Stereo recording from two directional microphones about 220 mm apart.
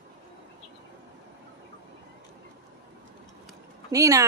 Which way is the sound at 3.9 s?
15° right (ahead or behind).